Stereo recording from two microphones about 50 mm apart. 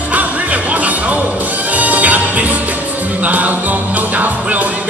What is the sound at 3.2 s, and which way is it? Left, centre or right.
Music, right.